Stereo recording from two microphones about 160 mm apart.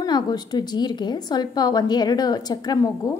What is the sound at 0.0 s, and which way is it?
A woman's voice, 25° left (ahead or behind).